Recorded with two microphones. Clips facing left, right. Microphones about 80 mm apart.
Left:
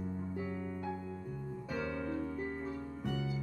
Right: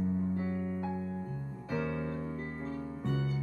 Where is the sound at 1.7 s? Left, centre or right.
Centre.